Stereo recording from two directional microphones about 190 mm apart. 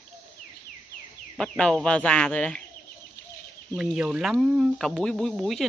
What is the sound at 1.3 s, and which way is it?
Speech, 5° left (ahead or behind).